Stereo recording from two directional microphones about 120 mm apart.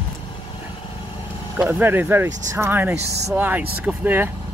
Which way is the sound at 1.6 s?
15° right (ahead or behind).